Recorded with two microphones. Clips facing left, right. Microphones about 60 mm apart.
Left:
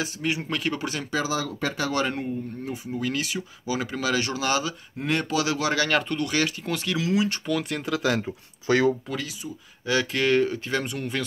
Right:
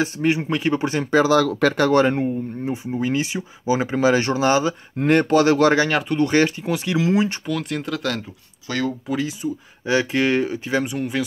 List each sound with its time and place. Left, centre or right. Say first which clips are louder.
0.0 s speech: right 8 dB; right
0.4 s speech: right 7 dB; right
1.1 s speech: right 12 dB; right
1.8 s speech: right 9 dB; right
2.1 s speech: right 7 dB; right
4.9 s speech: right 9 dB; right
5.9 s speech: right 2 dB; centre
6.1 s speech: right 8 dB; right
6.6 s speech: right 5 dB; centre
7.0 s speech: right 5 dB; right
7.4 s speech: right 2 dB; centre
8.6 s speech: left 4 dB; centre
9.4 s speech: right 10 dB; right; by 11.2 s centre